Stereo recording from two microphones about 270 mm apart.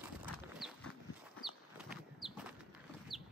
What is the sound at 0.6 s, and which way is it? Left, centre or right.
Horse, centre.